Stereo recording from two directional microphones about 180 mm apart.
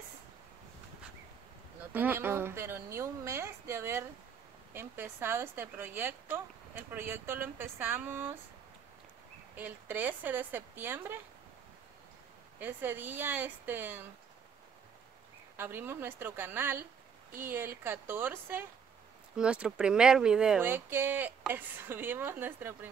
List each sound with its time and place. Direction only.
1.9 s speech: 10° right (ahead or behind)
9.6 s speech: 10° right (ahead or behind)
12.5 s speech: 10° right (ahead or behind)
15.5 s speech: 10° right (ahead or behind)